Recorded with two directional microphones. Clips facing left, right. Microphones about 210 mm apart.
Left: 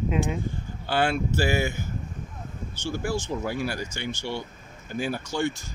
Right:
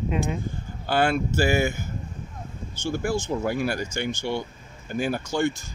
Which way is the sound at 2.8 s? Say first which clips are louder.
Right 3 dB; 50° right (ahead or behind).